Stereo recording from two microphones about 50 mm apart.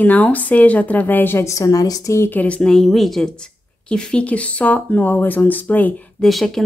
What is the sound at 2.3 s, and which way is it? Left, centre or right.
Speech, left.